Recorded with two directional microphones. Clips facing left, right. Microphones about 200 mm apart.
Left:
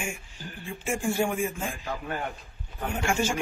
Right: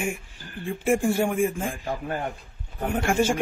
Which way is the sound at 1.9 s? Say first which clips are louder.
Right 2 dB; 30° right (ahead or behind).